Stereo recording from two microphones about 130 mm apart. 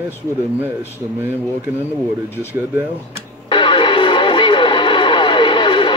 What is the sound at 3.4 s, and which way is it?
Music, 40° left (ahead or behind).